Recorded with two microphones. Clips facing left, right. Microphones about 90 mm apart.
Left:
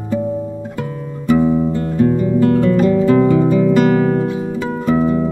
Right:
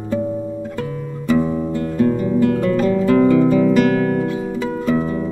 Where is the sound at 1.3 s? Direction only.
10° left (ahead or behind).